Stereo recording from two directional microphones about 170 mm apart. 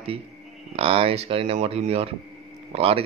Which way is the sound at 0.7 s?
35° right (ahead or behind).